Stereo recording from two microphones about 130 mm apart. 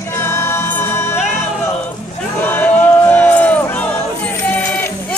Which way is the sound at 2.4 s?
15° left (ahead or behind).